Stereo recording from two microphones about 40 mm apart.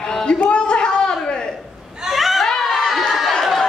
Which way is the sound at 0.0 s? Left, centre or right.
Centre.